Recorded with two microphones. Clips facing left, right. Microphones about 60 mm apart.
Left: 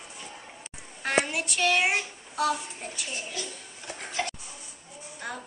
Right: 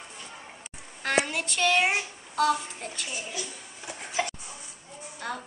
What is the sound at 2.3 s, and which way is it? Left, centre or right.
Speech, centre.